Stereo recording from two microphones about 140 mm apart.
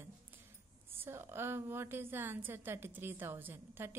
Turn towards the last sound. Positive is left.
turn(degrees=-15)  # may be behind; listen again after turning